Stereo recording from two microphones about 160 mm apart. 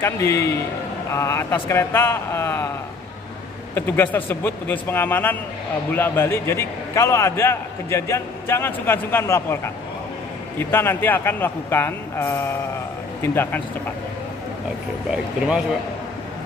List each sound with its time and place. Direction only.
0.0 s a man's voice: 15° left (ahead or behind)
3.7 s a man's voice: 15° left (ahead or behind)
10.6 s a man's voice: 15° left (ahead or behind)
15.0 s speech: 5° right (ahead or behind)